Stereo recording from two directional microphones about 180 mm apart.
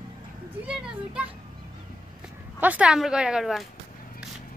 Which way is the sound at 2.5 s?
10° right (ahead or behind).